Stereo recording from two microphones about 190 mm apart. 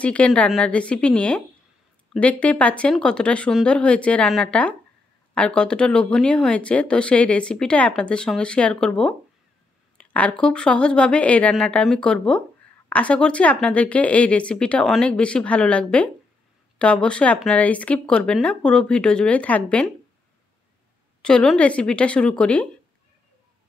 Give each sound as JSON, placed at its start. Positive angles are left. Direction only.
{"t": 0.0, "sound": "speech", "side_deg": 5}
{"t": 21.2, "sound": "speech", "side_deg": 5}